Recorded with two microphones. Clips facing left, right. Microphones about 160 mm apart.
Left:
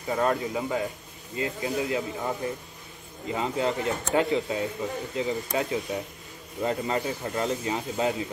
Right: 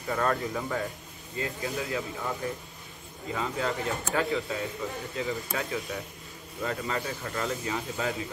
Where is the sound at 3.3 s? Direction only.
25° left (ahead or behind).